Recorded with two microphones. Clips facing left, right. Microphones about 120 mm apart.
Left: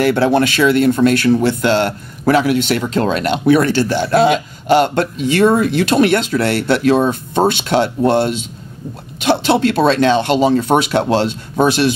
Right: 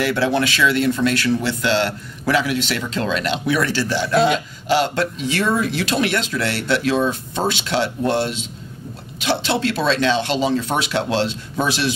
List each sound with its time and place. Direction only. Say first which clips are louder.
0.0 s speech: left 6 dB; 50° left (ahead or behind)